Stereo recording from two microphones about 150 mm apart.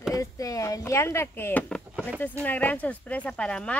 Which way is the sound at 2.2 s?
10° left (ahead or behind).